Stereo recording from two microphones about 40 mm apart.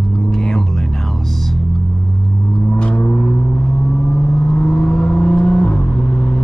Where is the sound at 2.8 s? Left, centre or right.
Left.